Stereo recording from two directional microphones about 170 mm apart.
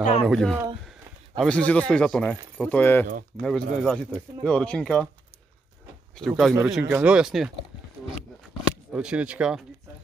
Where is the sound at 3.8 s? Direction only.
Centre (ahead or behind).